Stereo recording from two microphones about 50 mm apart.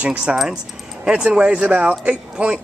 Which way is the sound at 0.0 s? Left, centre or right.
Right.